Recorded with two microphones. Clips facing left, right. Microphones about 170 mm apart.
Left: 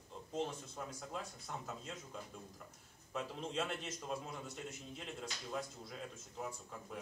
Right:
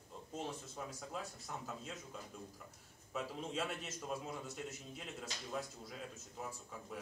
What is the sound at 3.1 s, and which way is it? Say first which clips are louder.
Speech: even; centre (ahead or behind).